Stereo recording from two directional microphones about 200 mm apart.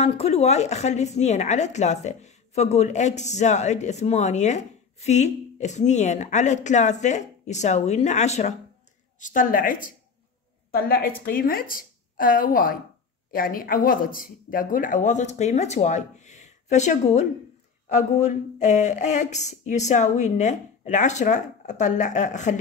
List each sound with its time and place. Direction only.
0.0 s a woman's voice: 30° left (ahead or behind)